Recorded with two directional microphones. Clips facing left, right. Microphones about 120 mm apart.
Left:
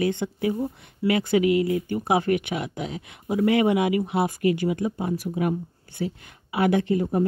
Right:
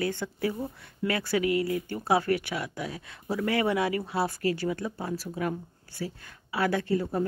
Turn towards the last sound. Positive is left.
turn(degrees=20)  # may be behind; listen again after turning